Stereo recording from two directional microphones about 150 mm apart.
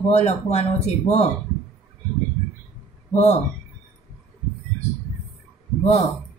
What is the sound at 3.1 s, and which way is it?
Speech, 50° left (ahead or behind).